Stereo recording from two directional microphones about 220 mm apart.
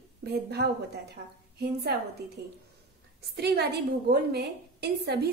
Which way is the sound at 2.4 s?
50° right (ahead or behind).